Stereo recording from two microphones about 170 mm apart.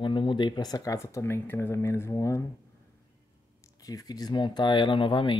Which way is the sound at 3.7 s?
20° left (ahead or behind).